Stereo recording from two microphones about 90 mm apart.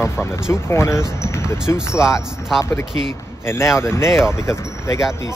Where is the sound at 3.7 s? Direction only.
30° left (ahead or behind).